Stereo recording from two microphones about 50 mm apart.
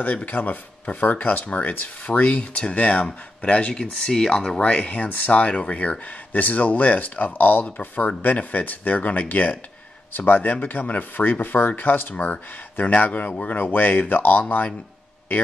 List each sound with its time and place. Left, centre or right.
0.0 s speech: left
3.7 s speech: centre
4.6 s speech: left